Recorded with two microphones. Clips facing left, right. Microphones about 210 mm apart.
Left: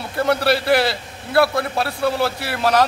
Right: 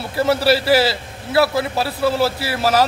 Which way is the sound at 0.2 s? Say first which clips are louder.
Right 2 dB; 5° right (ahead or behind).